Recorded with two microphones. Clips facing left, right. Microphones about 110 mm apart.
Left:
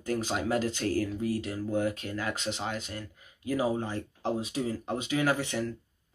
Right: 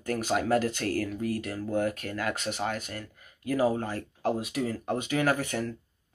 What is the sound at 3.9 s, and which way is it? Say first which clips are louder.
Speech: right 2 dB; 25° left (ahead or behind).